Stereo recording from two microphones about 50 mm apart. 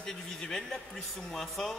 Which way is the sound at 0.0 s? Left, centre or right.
Centre.